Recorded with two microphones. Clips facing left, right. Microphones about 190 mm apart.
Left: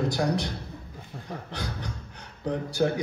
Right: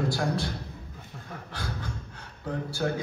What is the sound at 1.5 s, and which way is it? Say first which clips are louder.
A man's voice: right 2 dB; 20° left (ahead or behind).